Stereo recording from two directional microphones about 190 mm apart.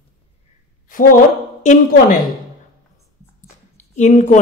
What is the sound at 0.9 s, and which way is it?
Speech, 45° left (ahead or behind).